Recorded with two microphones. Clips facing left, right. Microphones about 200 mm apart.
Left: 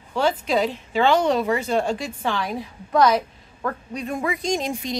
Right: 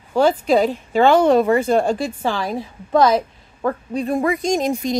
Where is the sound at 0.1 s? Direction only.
45° right (ahead or behind).